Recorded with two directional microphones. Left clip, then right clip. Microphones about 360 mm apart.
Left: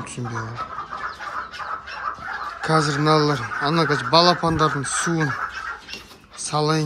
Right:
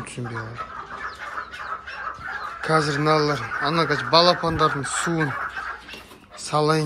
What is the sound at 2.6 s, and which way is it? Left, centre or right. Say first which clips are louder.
Speech: left 1 dB; centre.